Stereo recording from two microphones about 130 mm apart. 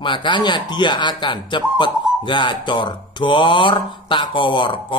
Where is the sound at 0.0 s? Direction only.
40° left (ahead or behind).